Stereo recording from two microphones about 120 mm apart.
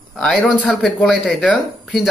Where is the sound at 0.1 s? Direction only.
5° left (ahead or behind).